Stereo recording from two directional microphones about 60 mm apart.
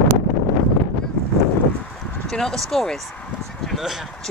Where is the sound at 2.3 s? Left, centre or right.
Centre.